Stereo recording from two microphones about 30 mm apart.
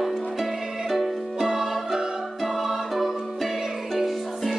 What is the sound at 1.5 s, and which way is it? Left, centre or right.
Music, centre.